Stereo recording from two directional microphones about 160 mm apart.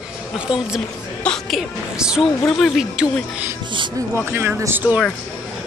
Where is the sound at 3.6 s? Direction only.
30° right (ahead or behind).